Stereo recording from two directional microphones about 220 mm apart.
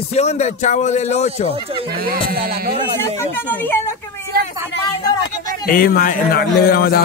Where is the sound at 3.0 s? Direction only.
10° left (ahead or behind).